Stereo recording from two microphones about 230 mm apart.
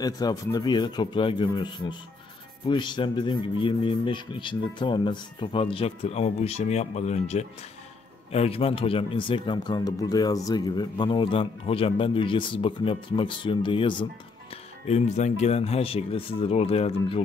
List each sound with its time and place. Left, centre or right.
0.0 s speech: centre